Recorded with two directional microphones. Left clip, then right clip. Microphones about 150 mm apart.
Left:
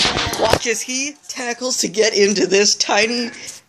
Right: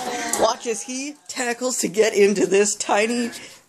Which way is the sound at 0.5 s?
5° right (ahead or behind).